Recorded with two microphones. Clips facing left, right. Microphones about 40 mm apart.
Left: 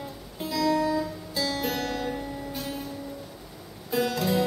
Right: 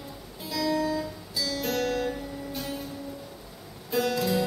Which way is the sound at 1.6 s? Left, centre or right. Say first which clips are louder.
Right 2 dB; centre.